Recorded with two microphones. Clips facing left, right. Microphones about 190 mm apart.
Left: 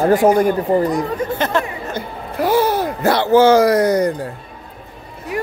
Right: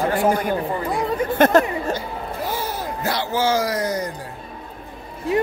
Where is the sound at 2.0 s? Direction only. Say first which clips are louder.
Left 5 dB; 75° left (ahead or behind).